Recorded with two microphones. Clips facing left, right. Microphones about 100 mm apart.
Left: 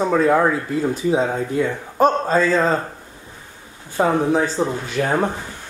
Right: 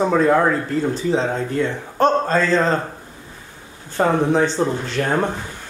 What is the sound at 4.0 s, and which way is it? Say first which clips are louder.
Speech: right 1 dB; 5° left (ahead or behind).